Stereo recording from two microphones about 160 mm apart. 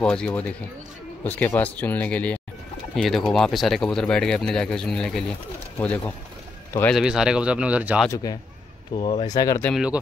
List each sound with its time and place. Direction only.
0.0 s speech: 5° left (ahead or behind)
6.9 s speech: 5° right (ahead or behind)
8.1 s speech: 25° left (ahead or behind)